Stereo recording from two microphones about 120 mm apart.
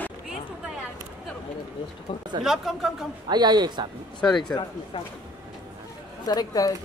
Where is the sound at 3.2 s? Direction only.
35° right (ahead or behind).